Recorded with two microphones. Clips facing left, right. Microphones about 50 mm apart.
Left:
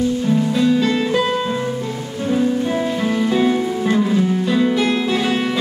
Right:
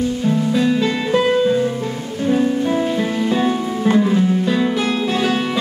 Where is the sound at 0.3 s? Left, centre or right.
Centre.